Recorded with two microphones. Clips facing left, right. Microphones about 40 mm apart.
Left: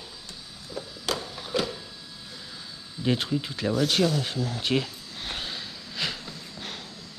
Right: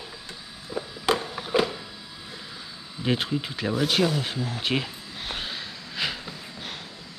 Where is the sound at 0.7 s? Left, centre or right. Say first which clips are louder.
Right 6 dB; right.